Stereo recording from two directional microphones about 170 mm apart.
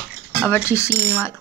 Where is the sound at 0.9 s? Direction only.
10° right (ahead or behind).